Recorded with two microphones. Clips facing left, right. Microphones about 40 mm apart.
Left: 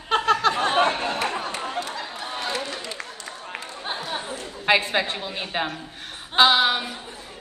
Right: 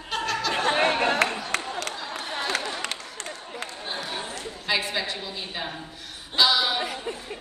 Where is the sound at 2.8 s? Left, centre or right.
Right.